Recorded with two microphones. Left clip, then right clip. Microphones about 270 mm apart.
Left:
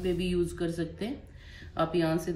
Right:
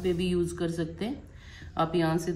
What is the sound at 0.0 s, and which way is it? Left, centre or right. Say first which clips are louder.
A woman's voice: right 1 dB; centre.